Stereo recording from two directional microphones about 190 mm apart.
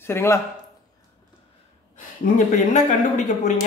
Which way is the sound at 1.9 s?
45° left (ahead or behind).